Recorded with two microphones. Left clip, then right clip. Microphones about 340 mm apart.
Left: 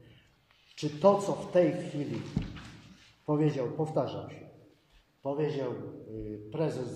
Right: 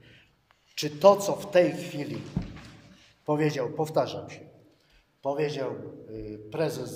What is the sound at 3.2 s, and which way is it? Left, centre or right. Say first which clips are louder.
A man's voice: right 3 dB; right.